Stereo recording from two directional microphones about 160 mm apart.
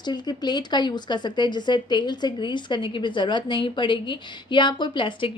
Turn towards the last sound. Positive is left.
turn(degrees=30)  # may be behind; listen again after turning